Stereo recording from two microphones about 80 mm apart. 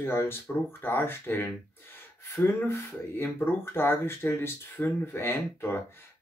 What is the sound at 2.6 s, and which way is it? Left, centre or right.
Speech, left.